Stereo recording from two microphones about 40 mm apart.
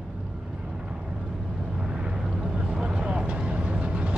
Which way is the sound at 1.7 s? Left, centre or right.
Right.